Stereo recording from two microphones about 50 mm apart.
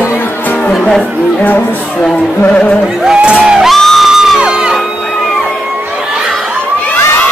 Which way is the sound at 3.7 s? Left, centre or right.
Centre.